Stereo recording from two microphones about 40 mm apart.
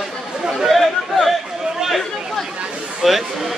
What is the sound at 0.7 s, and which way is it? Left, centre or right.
Chatter, centre.